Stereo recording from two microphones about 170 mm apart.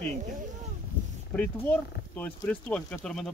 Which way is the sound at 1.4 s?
10° left (ahead or behind).